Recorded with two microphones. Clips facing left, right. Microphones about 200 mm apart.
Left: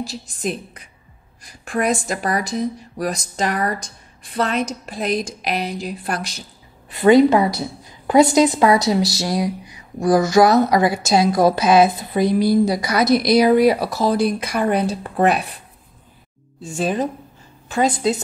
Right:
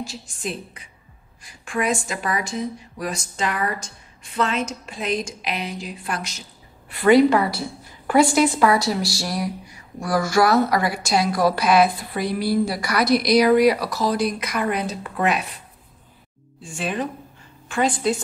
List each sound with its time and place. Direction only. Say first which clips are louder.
0.0 s speech: left 5 dB; 40° left (ahead or behind)
6.9 s a woman's voice: left 3 dB; 20° left (ahead or behind)
13.1 s speech: left 2 dB; centre (ahead or behind)
13.7 s a woman's voice: left 3 dB; 25° left (ahead or behind)
16.6 s speech: left 5 dB; 40° left (ahead or behind)